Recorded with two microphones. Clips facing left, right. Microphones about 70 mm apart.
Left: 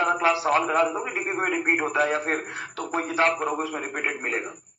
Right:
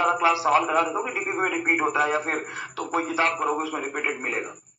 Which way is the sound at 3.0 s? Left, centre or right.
Left.